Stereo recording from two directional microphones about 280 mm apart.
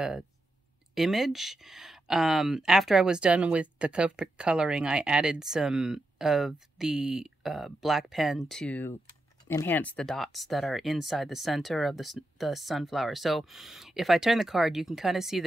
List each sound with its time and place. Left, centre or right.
0.9 s speech: centre